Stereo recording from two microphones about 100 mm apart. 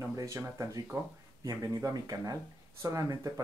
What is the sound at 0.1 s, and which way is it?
Speech, 30° right (ahead or behind).